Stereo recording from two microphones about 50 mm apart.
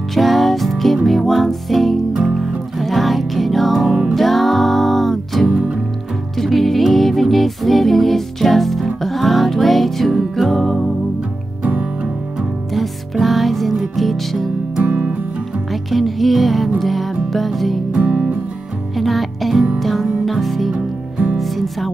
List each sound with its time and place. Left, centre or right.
0.1 s music: centre
11.8 s music: centre
12.7 s music: centre
14.8 s music: right
15.7 s music: centre
18.9 s music: centre
20.7 s music: right
21.4 s music: centre